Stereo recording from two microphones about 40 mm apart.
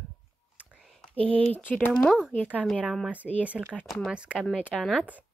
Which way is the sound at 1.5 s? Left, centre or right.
Left.